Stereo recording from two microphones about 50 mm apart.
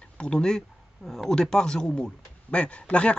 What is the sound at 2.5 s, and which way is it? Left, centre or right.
Speech, left.